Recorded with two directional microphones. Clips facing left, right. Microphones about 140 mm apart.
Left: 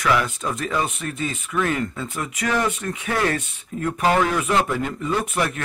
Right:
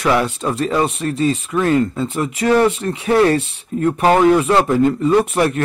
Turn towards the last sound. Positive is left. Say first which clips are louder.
# right 9 dB
turn(degrees=-35)  # may be behind; listen again after turning